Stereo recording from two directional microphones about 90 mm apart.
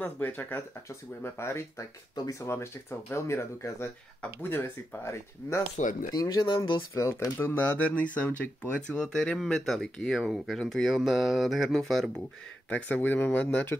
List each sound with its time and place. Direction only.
0.0 s speech: 20° left (ahead or behind)
6.1 s speech: 50° left (ahead or behind)
6.9 s speech: 30° left (ahead or behind); by 12.1 s 5° left (ahead or behind)
12.6 s speech: 15° left (ahead or behind)